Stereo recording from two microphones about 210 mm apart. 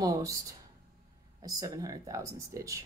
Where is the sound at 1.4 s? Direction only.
15° right (ahead or behind).